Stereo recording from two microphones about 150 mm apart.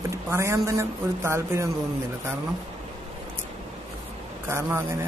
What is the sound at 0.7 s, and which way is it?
Speech, 20° right (ahead or behind).